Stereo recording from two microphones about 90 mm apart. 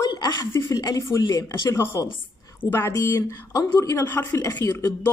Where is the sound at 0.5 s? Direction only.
40° left (ahead or behind).